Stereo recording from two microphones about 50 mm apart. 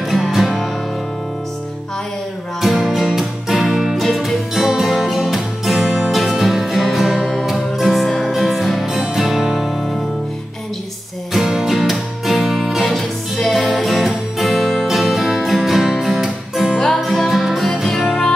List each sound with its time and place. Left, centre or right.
0.1 s music: centre
2.6 s music: centre
5.9 s music: centre
6.1 s music: centre
11.3 s music: centre